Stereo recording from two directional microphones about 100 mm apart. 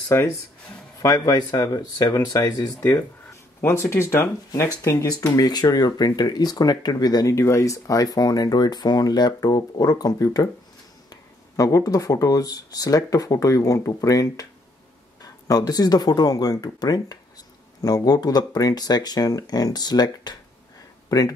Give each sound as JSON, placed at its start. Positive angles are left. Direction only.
{"t": 1.0, "sound": "speech", "side_deg": 35}
{"t": 2.8, "sound": "speech", "side_deg": 20}
{"t": 4.8, "sound": "speech", "side_deg": 35}